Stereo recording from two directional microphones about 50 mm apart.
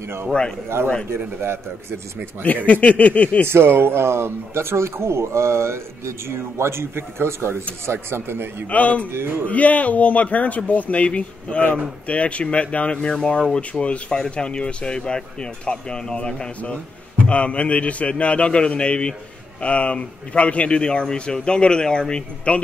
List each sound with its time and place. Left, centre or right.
0.3 s a man's voice: centre
1.1 s speech: right
2.4 s a man's voice: left
3.4 s a man's voice: right
8.6 s a man's voice: left